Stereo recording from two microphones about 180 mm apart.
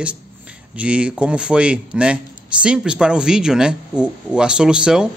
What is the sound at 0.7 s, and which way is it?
Speech, 5° right (ahead or behind).